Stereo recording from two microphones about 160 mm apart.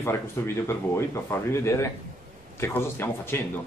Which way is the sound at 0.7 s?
15° left (ahead or behind).